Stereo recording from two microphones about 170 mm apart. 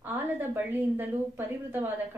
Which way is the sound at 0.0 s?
10° right (ahead or behind).